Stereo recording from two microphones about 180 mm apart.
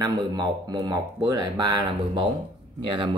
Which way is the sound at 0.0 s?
20° right (ahead or behind).